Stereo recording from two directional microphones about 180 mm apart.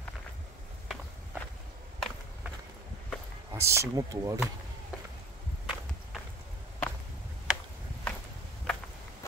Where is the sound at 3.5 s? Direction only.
15° right (ahead or behind).